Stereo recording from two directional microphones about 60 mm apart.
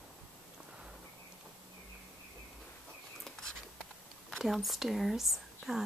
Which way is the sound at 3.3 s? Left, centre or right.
Centre.